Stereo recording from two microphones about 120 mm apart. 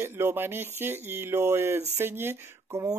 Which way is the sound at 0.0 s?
20° right (ahead or behind).